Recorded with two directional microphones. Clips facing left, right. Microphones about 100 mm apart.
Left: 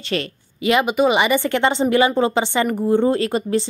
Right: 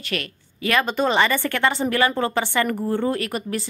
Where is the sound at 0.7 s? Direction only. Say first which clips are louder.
Left 4 dB; 20° left (ahead or behind).